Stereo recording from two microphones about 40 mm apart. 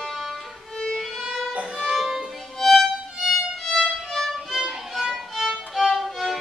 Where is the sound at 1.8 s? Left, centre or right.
Centre.